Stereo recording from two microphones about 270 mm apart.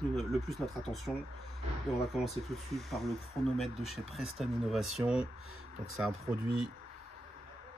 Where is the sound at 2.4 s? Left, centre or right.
Centre.